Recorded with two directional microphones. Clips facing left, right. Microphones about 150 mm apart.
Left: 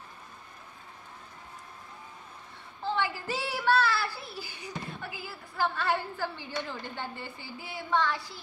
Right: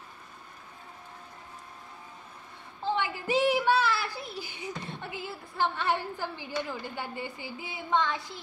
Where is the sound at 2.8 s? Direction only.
20° right (ahead or behind).